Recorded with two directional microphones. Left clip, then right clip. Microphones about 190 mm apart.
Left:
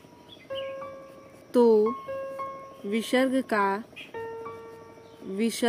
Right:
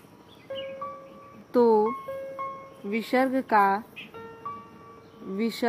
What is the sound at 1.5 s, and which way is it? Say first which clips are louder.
Speech: even; 20° left (ahead or behind).